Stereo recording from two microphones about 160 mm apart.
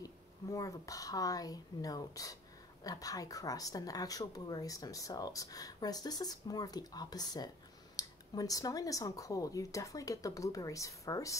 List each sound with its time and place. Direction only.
0.0 s speech: 20° left (ahead or behind)